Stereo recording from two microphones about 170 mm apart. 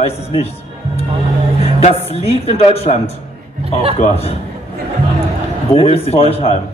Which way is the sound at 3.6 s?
35° right (ahead or behind).